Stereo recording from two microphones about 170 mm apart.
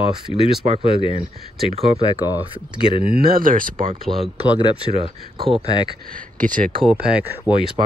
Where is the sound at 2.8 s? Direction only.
30° left (ahead or behind).